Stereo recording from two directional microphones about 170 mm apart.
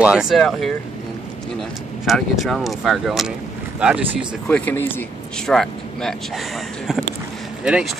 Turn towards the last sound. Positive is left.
turn(degrees=-5)  # may be behind; listen again after turning